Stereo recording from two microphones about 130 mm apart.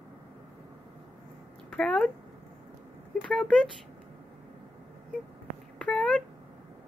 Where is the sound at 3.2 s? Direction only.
5° left (ahead or behind).